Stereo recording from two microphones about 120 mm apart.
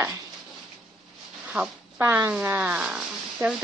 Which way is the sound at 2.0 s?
20° right (ahead or behind).